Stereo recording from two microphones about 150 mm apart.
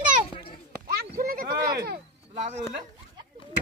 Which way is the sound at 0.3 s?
35° left (ahead or behind).